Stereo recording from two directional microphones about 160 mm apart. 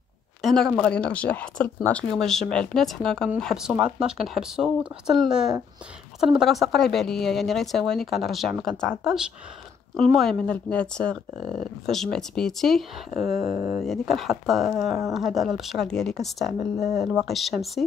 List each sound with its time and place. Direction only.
0.4 s speech: centre (ahead or behind)
10.1 s speech: 5° left (ahead or behind)
13.5 s speech: 60° left (ahead or behind)
13.8 s speech: centre (ahead or behind)